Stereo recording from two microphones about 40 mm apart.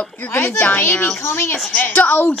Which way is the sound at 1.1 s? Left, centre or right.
Left.